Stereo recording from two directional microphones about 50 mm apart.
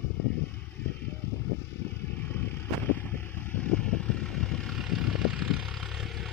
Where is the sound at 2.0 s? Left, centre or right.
Left.